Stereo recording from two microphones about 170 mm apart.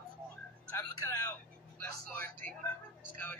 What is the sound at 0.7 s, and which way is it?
Music, 15° left (ahead or behind).